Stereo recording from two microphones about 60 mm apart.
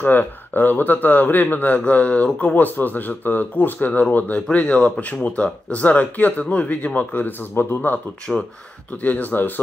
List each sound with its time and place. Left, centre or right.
0.0 s speech: left
8.3 s speech: centre
9.0 s speech: left